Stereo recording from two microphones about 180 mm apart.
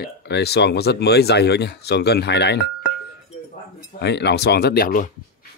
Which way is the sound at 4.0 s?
70° left (ahead or behind).